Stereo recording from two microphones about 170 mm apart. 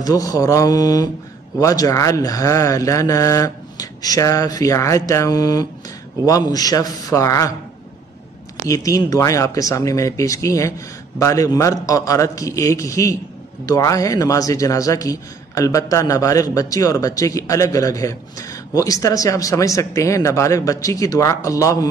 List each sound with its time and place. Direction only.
0.0 s a man's voice: 20° left (ahead or behind)
8.6 s a man's voice: 20° left (ahead or behind)